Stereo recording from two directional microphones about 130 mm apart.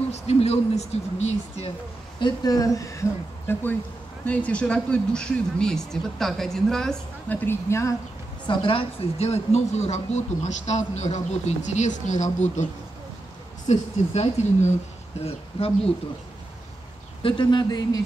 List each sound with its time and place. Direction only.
0.1 s speech: 55° left (ahead or behind)
2.1 s speech: 35° left (ahead or behind)
4.3 s speech: 10° left (ahead or behind)
8.5 s a woman's voice: 45° left (ahead or behind); by 12.6 s 65° left (ahead or behind)
13.7 s a woman's voice: 60° left (ahead or behind)
17.2 s speech: 35° left (ahead or behind)